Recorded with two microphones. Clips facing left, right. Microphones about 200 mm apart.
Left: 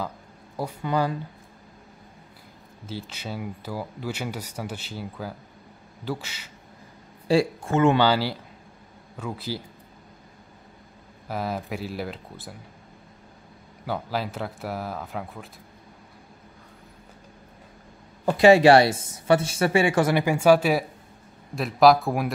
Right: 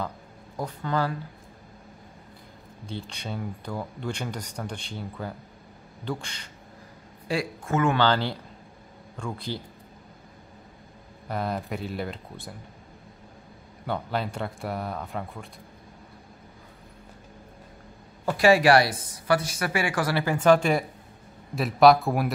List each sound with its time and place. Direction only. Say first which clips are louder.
0.6 s speech: left 2 dB; 10° left (ahead or behind)
2.9 s speech: left 1 dB; 5° left (ahead or behind)
7.2 s a woman's voice: left 7 dB; 30° left (ahead or behind)
8.0 s a man's voice: left 2 dB; 5° left (ahead or behind)
11.2 s speech: even; 5° left (ahead or behind)
13.8 s speech: even; 5° left (ahead or behind)
18.2 s a woman's voice: left 4 dB; 25° left (ahead or behind); by 22.3 s centre (ahead or behind)